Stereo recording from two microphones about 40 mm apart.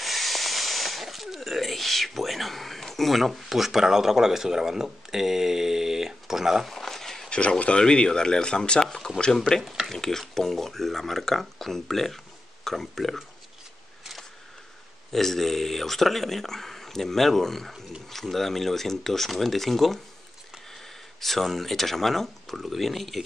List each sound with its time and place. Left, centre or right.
0.0 s speech: centre
6.7 s a sound: centre
7.2 s speech: left
8.8 s speech: centre
9.8 s speech: centre
15.1 s speech: centre
21.2 s speech: centre